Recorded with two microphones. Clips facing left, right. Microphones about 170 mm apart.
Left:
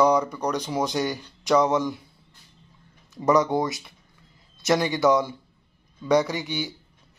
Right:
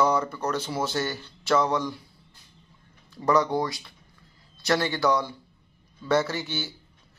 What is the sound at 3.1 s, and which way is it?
A man's voice, 20° left (ahead or behind).